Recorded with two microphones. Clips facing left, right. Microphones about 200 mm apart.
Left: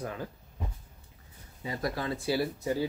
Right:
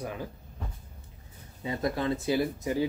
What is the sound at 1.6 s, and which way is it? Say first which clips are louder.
Speech: right 4 dB; 25° right (ahead or behind).